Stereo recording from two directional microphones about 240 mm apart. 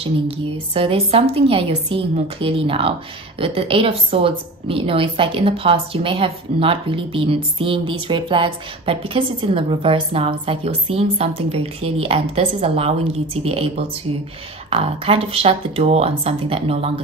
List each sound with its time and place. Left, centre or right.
0.7 s a woman's voice: right